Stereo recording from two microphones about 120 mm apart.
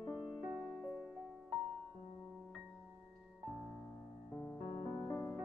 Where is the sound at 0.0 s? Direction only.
Centre (ahead or behind).